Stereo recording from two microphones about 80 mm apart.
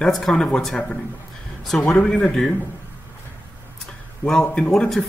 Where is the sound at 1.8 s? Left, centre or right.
Centre.